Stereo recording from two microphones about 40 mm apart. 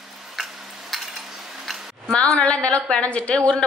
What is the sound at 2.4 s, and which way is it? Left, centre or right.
A woman's voice, left.